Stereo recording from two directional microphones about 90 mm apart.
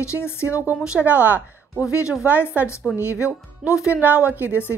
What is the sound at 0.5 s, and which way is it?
Speech, 15° right (ahead or behind).